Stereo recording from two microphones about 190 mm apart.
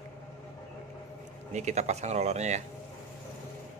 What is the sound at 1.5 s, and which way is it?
Speech, 35° right (ahead or behind).